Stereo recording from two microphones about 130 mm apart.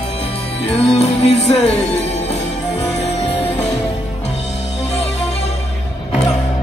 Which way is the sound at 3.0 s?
60° left (ahead or behind).